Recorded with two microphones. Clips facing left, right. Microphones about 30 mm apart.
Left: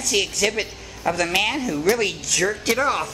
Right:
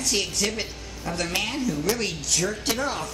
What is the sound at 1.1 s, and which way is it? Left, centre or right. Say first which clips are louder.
A woman's voice: left 7 dB; left.